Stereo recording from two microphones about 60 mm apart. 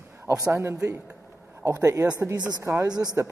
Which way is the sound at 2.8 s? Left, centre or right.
Right.